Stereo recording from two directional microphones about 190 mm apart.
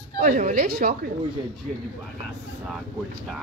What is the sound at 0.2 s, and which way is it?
Speech, 40° right (ahead or behind).